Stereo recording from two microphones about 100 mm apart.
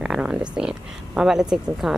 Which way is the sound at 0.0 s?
10° right (ahead or behind).